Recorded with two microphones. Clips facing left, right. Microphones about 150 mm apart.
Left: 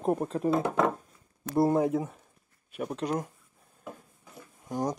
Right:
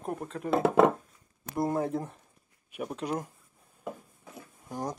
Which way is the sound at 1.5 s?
30° left (ahead or behind).